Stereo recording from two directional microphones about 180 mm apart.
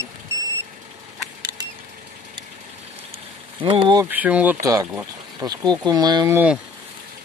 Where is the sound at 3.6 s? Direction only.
30° right (ahead or behind).